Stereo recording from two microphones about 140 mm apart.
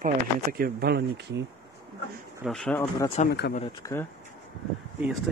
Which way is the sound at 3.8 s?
20° left (ahead or behind).